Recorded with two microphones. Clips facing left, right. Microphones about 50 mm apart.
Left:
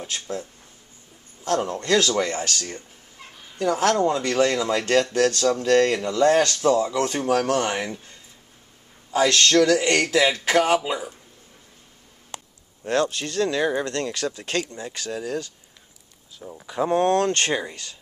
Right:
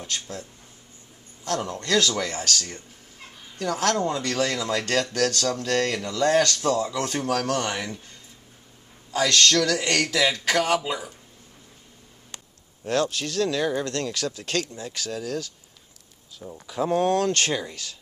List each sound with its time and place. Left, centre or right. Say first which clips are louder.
0.0 s speech: left 3 dB; centre
1.7 s speech: even; left
12.8 s speech: left 2 dB; centre
17.1 s speech: left 2 dB; left
17.4 s speech: left 2 dB; centre